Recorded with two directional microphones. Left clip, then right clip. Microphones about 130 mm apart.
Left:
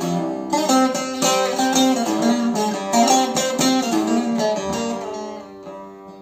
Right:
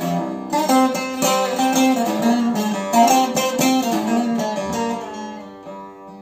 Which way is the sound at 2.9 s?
20° right (ahead or behind).